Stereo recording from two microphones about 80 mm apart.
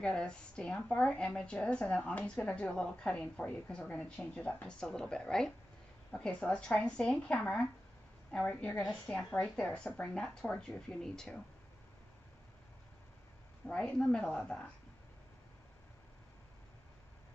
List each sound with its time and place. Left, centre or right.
0.0 s a woman's voice: centre
13.7 s a woman's voice: centre